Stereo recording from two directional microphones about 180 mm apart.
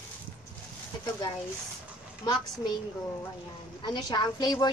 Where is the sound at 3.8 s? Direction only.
25° left (ahead or behind).